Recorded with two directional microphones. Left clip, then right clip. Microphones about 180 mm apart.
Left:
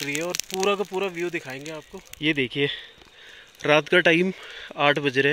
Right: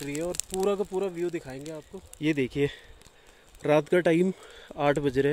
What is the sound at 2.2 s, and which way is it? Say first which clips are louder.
Speech: left 3 dB; 10° right (ahead or behind).